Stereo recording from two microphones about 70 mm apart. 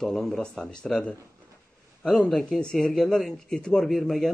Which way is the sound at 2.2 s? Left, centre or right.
Centre.